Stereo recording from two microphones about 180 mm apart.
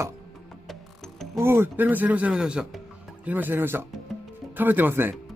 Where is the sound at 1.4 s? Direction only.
15° right (ahead or behind).